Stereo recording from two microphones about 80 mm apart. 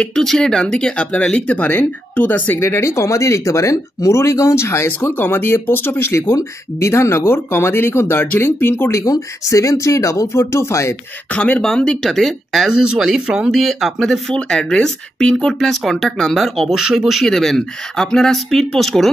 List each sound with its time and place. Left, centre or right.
0.0 s speech: centre; by 2.6 s left
2.6 s speech: left
9.0 s speech: left
11.3 s speech: centre
11.6 s speech: centre
12.6 s speech: centre